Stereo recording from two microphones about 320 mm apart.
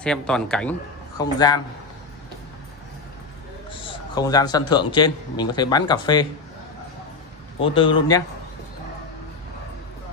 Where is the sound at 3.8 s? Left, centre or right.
Centre.